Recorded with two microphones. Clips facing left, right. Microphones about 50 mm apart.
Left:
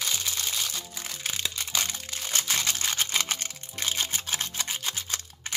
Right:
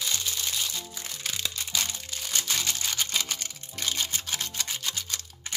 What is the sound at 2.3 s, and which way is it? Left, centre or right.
Music, left.